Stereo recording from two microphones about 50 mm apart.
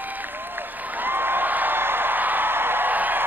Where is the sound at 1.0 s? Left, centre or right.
Right.